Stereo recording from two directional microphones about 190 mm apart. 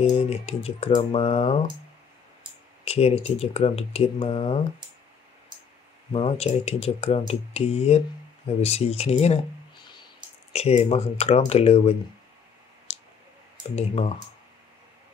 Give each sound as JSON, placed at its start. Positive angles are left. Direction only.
{"t": 0.1, "sound": "speech", "side_deg": 35}
{"t": 2.8, "sound": "speech", "side_deg": 35}
{"t": 6.1, "sound": "speech", "side_deg": 30}
{"t": 10.5, "sound": "speech", "side_deg": 35}
{"t": 12.9, "sound": "clicking", "side_deg": 30}
{"t": 13.7, "sound": "speech", "side_deg": 30}